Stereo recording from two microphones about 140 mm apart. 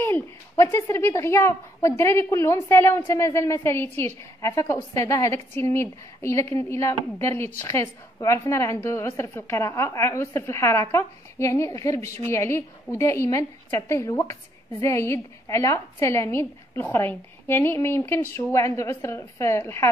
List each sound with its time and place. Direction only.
0.0 s a woman's voice: 20° left (ahead or behind)